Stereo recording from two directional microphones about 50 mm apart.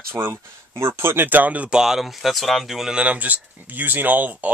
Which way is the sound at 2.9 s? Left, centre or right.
Right.